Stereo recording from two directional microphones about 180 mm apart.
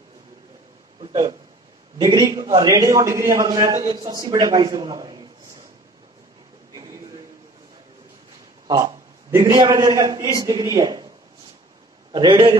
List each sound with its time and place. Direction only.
2.0 s a man's voice: 25° right (ahead or behind)
8.6 s a man's voice: 20° right (ahead or behind)
12.1 s a man's voice: 25° right (ahead or behind)